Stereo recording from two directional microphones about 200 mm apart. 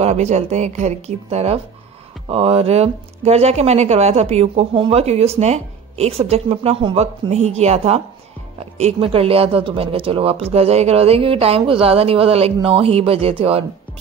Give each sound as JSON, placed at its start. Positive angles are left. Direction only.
{"t": 0.0, "sound": "speech", "side_deg": -35}